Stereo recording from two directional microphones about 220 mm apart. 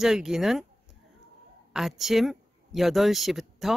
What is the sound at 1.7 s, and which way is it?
Speech, centre (ahead or behind).